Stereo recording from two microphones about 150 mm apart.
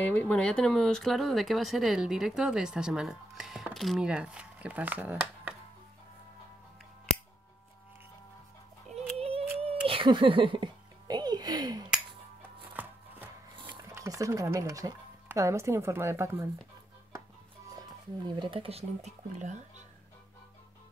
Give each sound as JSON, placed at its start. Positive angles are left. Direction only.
{"t": 0.0, "sound": "speech", "side_deg": 10}
{"t": 9.1, "sound": "yodeling", "side_deg": -40}
{"t": 9.8, "sound": "a child's voice", "side_deg": -35}
{"t": 12.8, "sound": "chopping", "side_deg": -10}
{"t": 13.6, "sound": "a sound", "side_deg": -30}
{"t": 13.8, "sound": "speech", "side_deg": -20}
{"t": 18.2, "sound": "speech", "side_deg": -35}